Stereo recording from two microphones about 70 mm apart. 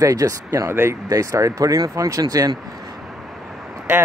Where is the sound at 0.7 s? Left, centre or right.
Right.